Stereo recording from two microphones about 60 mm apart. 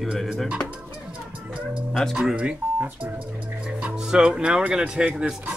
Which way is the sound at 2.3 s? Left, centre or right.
Right.